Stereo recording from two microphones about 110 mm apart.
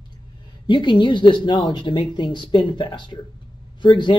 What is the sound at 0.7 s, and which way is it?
Speech, 45° left (ahead or behind).